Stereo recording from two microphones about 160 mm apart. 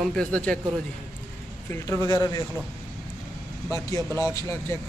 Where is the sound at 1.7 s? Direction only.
15° left (ahead or behind).